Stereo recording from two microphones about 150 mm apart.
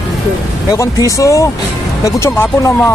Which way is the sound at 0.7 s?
20° left (ahead or behind).